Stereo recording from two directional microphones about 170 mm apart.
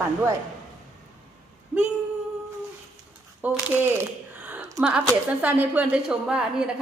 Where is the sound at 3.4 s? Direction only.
10° right (ahead or behind).